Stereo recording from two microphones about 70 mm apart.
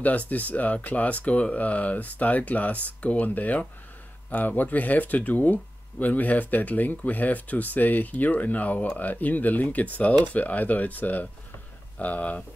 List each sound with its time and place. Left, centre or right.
0.0 s speech: left